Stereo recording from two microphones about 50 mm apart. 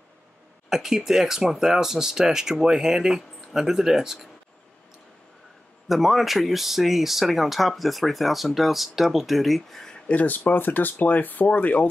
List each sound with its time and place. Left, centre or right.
0.7 s speech: centre
5.9 s speech: centre
10.0 s speech: left